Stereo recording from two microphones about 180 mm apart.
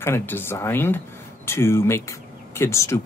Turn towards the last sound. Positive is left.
turn(degrees=15)  # may be behind; listen again after turning